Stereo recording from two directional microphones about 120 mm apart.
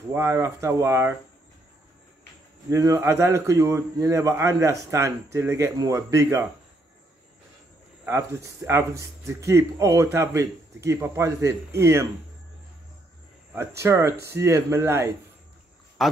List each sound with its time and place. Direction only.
0.1 s speech: 20° right (ahead or behind)
2.7 s speech: 25° right (ahead or behind)
8.0 s speech: 25° right (ahead or behind)
13.6 s speech: 25° right (ahead or behind)
16.0 s speech: centre (ahead or behind)